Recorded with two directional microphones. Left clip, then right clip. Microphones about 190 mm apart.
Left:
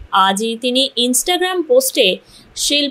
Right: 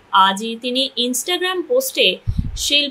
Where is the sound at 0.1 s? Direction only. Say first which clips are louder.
Left 1 dB; 25° left (ahead or behind).